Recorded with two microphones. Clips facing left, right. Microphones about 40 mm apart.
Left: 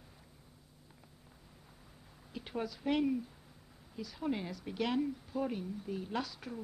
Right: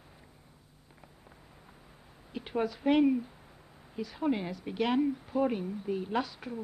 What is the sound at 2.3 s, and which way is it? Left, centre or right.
A woman's voice, right.